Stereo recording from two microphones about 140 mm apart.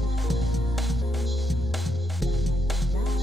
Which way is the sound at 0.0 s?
Centre (ahead or behind).